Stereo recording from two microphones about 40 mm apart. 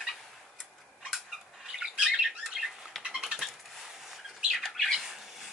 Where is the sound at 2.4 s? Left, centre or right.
Centre.